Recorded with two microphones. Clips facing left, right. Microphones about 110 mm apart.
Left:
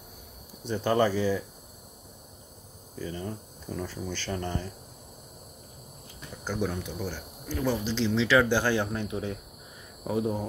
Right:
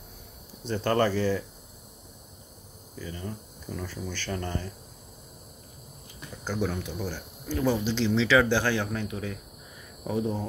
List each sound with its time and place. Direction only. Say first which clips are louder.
0.7 s speech: even; 10° left (ahead or behind)
3.0 s speech: left 2 dB; 30° left (ahead or behind)
6.4 s speech: right 1 dB; 5° left (ahead or behind); by 9.3 s 20° left (ahead or behind)
10.0 s speech: even; 5° left (ahead or behind)